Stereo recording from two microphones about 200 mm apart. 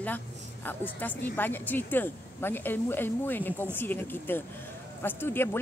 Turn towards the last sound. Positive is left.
turn(degrees=10)  # may be behind; listen again after turning